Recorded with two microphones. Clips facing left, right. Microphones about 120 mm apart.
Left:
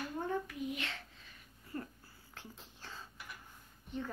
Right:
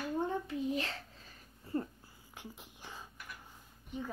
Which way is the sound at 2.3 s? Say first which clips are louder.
Right 3 dB; 15° right (ahead or behind).